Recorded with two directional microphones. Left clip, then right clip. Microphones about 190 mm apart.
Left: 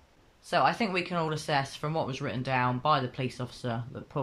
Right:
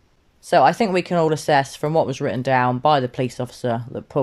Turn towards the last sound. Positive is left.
turn(degrees=-40)  # may be behind; listen again after turning